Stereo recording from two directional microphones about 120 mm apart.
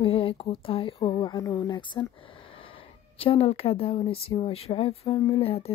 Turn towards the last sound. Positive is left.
turn(degrees=55)  # may be behind; listen again after turning